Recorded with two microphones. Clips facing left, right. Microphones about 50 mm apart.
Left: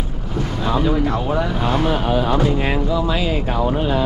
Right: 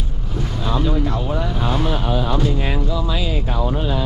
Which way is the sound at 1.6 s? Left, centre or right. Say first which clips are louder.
Left 3 dB; left.